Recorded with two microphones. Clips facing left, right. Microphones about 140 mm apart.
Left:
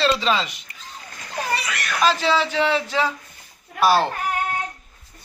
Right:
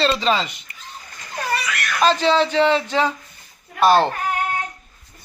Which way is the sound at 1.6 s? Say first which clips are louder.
Right 2 dB; 30° left (ahead or behind).